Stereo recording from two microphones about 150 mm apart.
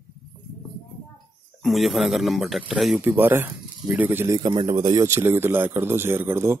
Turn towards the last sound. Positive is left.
turn(degrees=-15)  # may be behind; listen again after turning